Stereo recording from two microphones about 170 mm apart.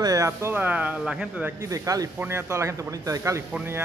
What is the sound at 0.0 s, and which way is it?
Speech, 20° right (ahead or behind).